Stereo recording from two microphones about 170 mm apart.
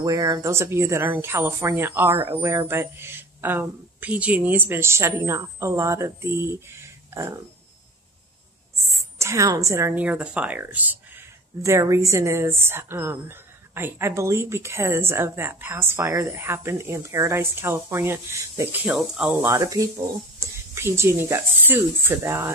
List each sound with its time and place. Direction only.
0.0 s a woman's voice: 20° right (ahead or behind)
8.9 s a woman's voice: 20° right (ahead or behind)
19.4 s a woman's voice: 20° right (ahead or behind)